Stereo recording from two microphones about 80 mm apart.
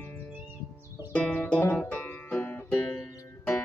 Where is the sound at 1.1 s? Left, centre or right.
Centre.